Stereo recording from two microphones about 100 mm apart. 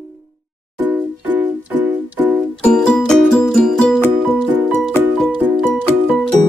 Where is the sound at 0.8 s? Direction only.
20° right (ahead or behind).